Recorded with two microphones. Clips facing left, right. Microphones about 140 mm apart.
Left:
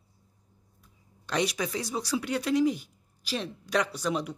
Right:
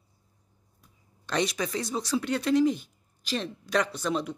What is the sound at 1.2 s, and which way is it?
Speech, 10° left (ahead or behind).